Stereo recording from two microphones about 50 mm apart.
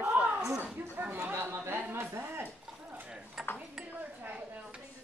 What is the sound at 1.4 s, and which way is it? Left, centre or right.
A woman's voice, right.